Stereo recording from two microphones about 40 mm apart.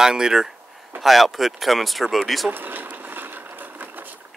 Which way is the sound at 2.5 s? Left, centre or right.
Right.